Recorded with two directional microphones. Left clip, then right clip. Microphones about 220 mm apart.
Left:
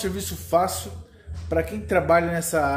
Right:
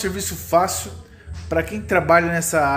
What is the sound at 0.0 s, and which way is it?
A man's voice, centre (ahead or behind).